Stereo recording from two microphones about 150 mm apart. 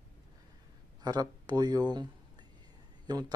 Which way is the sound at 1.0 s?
25° right (ahead or behind).